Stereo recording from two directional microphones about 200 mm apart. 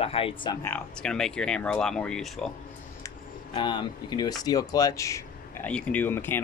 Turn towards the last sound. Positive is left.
turn(degrees=10)  # may be behind; listen again after turning